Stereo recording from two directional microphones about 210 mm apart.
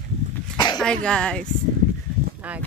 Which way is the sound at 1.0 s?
5° left (ahead or behind).